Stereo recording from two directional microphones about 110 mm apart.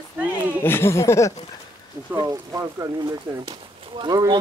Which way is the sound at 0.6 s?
20° left (ahead or behind).